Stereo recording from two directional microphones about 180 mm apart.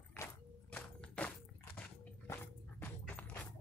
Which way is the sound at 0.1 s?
10° left (ahead or behind).